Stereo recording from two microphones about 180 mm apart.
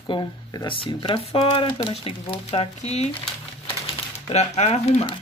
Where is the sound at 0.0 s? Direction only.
25° left (ahead or behind).